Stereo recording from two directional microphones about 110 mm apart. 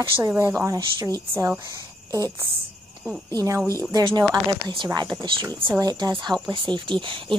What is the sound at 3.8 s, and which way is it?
Speech, 25° right (ahead or behind).